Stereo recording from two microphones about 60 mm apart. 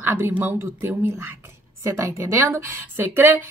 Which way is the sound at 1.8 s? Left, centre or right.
Right.